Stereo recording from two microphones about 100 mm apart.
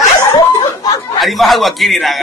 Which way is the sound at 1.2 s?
Centre (ahead or behind).